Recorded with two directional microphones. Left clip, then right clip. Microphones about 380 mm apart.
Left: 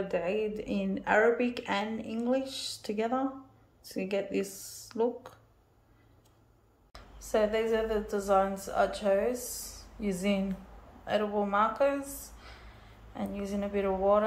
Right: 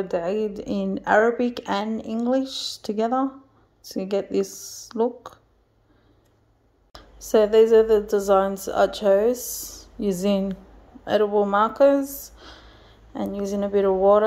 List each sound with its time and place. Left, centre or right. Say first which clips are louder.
0.1 s a woman's voice: right 6 dB; centre
3.9 s a woman's voice: right 7 dB; centre
6.9 s a woman's voice: right 10 dB; right